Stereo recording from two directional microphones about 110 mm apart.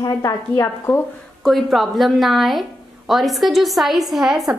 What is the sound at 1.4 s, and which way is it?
A woman's voice, centre (ahead or behind).